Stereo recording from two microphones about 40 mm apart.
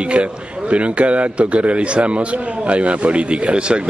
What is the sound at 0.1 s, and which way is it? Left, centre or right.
A man's voice, right.